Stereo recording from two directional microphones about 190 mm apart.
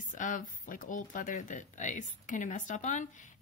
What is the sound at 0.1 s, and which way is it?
Speech, 45° left (ahead or behind).